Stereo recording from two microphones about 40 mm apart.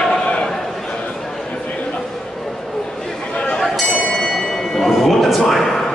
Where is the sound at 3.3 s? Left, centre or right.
Left.